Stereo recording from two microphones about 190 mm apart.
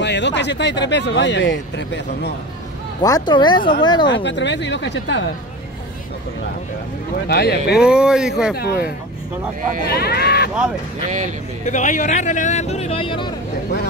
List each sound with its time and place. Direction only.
0.0 s speech: 65° left (ahead or behind)
3.0 s speech: 20° left (ahead or behind)
4.1 s speech: 70° left (ahead or behind)
7.2 s speech: 55° left (ahead or behind)
7.7 s speech: 5° right (ahead or behind)
9.8 s speech: 55° left (ahead or behind)
11.6 s speech: 40° left (ahead or behind)